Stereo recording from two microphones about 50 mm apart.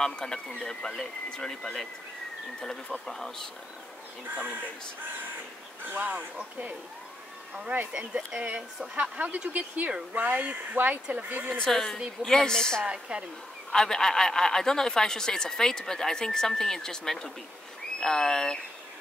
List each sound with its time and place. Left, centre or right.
0.0 s speech: centre
2.9 s speech: centre
5.9 s speech: right
7.7 s speech: right
8.4 s speech: right
9.5 s speech: right
11.6 s speech: centre
12.8 s speech: right
13.7 s speech: centre